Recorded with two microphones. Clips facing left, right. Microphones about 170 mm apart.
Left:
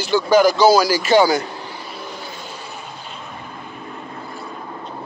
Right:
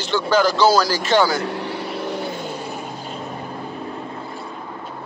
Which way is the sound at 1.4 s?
70° right (ahead or behind).